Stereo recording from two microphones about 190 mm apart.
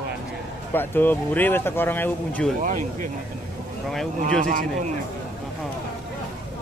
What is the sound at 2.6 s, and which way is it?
Speech, 45° right (ahead or behind).